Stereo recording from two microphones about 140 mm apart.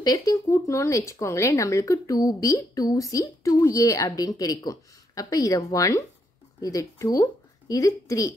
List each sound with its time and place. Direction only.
0.0 s speech: 25° left (ahead or behind)